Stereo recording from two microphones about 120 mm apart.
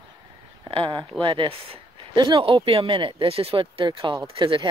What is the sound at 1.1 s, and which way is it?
Speech, 45° right (ahead or behind).